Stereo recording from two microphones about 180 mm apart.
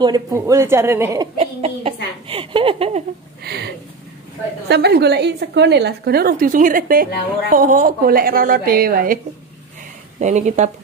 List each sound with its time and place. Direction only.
0.0 s a woman's voice: 20° right (ahead or behind)
1.4 s a sound: 35° right (ahead or behind)
2.2 s a woman's voice: 30° right (ahead or behind)
3.4 s a woman's voice: 65° right (ahead or behind)
10.2 s a woman's voice: 40° right (ahead or behind)